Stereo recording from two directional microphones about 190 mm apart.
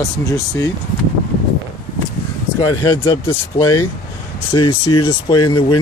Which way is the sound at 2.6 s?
20° left (ahead or behind).